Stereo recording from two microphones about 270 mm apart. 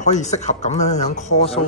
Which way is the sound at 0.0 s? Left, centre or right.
Left.